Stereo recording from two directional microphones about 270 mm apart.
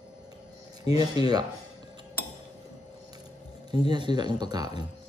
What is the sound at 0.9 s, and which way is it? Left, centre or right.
Speech, centre.